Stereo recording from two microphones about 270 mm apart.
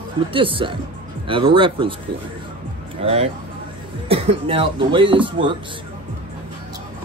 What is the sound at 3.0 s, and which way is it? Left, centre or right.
Speech, right.